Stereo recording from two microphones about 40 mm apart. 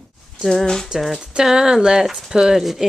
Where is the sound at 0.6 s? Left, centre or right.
Centre.